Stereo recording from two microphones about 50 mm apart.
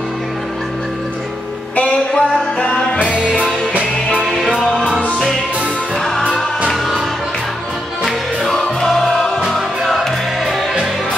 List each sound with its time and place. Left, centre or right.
2.1 s music: left
3.1 s music: right
4.6 s music: centre
5.9 s music: centre
8.0 s music: centre